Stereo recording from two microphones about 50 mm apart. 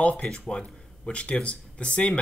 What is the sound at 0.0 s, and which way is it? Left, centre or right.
Speech, left.